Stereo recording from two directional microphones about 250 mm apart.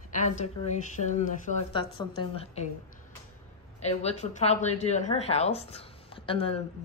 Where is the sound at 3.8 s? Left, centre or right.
Left.